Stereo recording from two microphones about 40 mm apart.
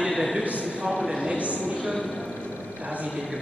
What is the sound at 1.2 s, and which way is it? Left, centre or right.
A man's voice, right.